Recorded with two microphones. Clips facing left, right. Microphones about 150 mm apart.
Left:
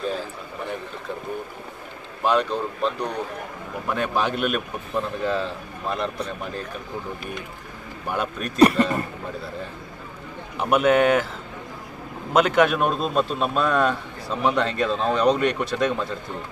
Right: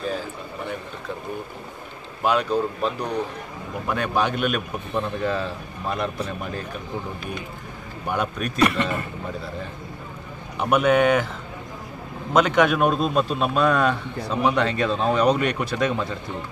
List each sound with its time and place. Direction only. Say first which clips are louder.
2.2 s a man's voice: right 1 dB; 5° right (ahead or behind)
8.1 s a man's voice: right 1 dB; centre (ahead or behind)
8.5 s a man's voice: left 5 dB; 35° left (ahead or behind)
10.6 s a man's voice: even; centre (ahead or behind)
12.3 s a man's voice: even; 5° left (ahead or behind)